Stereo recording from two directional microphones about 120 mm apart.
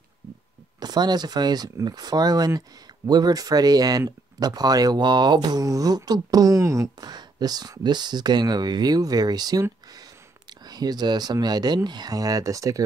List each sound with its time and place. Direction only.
0.7 s speech: 35° right (ahead or behind)